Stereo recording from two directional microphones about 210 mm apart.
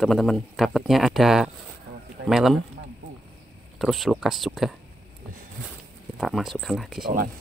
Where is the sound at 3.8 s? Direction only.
Centre (ahead or behind).